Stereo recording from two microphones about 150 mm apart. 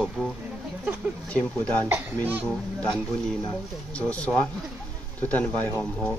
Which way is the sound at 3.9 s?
10° left (ahead or behind).